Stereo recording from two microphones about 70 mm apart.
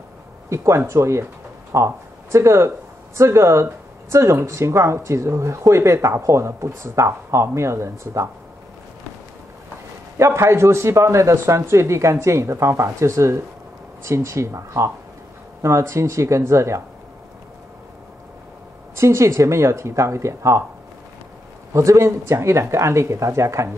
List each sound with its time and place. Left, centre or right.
0.5 s speech: right
10.1 s speech: right
18.9 s speech: right
21.7 s speech: right